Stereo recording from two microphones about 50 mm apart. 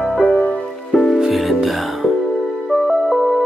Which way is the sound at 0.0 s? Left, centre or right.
Left.